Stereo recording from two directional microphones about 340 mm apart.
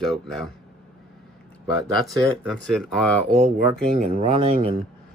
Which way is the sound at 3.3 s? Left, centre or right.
Centre.